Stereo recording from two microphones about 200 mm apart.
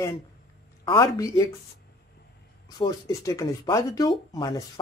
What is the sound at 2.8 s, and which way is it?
Speech, 15° left (ahead or behind).